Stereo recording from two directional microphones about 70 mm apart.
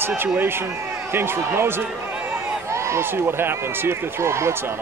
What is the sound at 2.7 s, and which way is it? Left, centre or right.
Speech, right.